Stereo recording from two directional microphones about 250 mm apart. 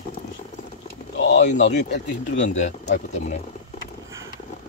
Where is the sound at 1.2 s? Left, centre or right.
Left.